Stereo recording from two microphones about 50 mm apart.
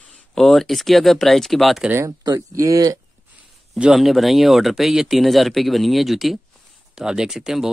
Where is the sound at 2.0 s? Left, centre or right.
Right.